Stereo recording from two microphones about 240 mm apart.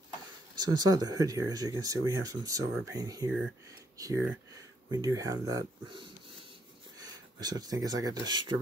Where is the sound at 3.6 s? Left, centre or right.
Centre.